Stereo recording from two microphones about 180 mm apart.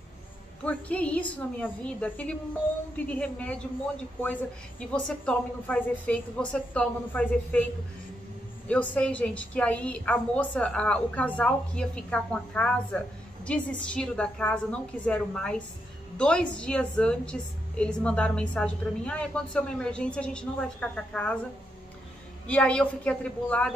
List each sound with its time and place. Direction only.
0.7 s a woman's voice: 5° left (ahead or behind)
8.6 s a woman's voice: 5° left (ahead or behind)
22.5 s a woman's voice: 5° left (ahead or behind)